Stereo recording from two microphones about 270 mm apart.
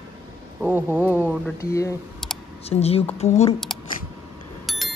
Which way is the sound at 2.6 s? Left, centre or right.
Left.